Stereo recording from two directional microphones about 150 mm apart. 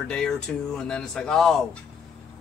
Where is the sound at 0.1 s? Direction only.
5° left (ahead or behind).